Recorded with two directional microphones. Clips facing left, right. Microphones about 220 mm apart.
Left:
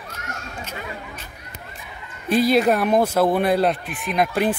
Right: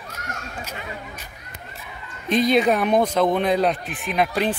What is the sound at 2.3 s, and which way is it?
Speech, 5° left (ahead or behind).